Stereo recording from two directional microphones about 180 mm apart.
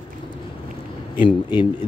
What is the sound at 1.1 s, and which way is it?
Speech, 30° left (ahead or behind).